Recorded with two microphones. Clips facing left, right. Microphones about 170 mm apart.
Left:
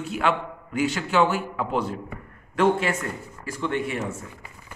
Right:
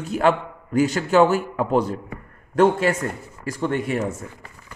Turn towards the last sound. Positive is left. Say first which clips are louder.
# right 4 dB
turn(degrees=-40)  # may be behind; listen again after turning